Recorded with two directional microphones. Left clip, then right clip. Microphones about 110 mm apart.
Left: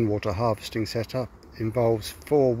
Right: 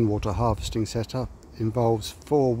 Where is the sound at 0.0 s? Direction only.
30° right (ahead or behind).